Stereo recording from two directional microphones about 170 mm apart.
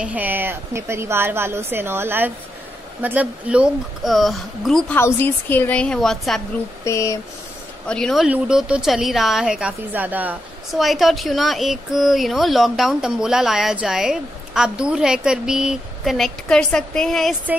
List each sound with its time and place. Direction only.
0.0 s a woman's voice: 10° right (ahead or behind)
4.9 s a woman's voice: 10° left (ahead or behind)
6.8 s a sound: 20° left (ahead or behind)
7.8 s a woman's voice: 5° left (ahead or behind)